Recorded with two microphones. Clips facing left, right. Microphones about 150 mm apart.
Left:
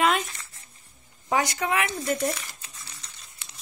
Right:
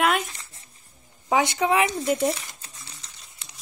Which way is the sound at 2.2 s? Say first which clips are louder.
Right 4 dB; 25° right (ahead or behind).